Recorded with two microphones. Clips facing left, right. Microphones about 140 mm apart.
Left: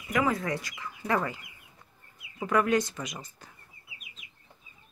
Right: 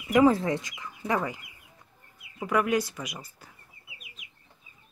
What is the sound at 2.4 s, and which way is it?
Speech, 10° right (ahead or behind).